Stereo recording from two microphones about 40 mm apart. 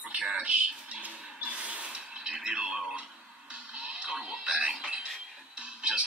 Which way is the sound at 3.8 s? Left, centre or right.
Right.